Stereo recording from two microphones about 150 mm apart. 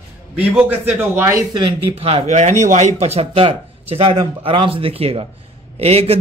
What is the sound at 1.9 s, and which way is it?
Speech, 40° right (ahead or behind).